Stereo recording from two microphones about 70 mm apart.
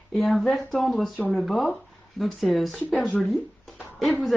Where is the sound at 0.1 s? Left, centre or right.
Centre.